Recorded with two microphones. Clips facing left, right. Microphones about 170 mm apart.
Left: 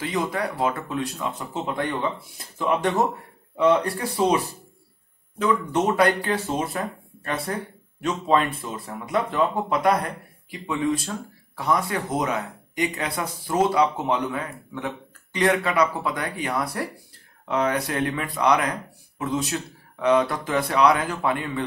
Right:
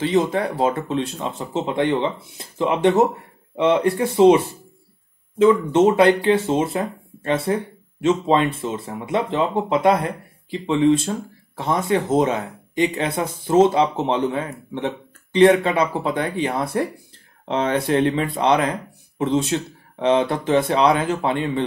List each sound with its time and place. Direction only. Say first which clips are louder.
0.0 s speech: right 7 dB; 25° right (ahead or behind)
5.4 s speech: right 8 dB; 25° right (ahead or behind)